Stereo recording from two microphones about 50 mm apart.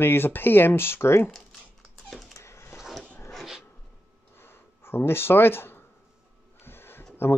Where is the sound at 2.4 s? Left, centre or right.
Left.